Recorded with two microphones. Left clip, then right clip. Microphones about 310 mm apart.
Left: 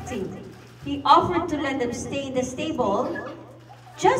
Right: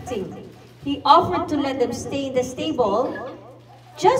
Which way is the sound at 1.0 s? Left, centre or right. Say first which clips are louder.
Right 2 dB; right.